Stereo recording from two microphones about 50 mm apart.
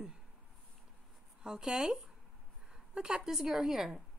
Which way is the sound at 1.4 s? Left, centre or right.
Centre.